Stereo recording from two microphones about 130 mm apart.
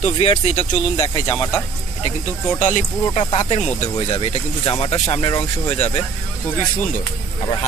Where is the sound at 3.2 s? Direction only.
40° left (ahead or behind).